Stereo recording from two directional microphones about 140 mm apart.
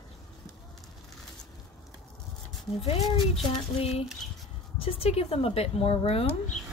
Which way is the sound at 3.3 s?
45° left (ahead or behind).